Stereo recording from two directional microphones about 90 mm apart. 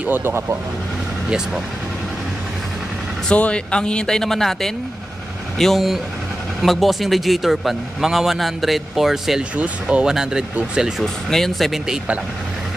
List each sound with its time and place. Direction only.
0.0 s speech: 25° right (ahead or behind)
3.3 s a man's voice: 15° left (ahead or behind); by 11.1 s 10° right (ahead or behind)
11.2 s a man's voice: 5° left (ahead or behind)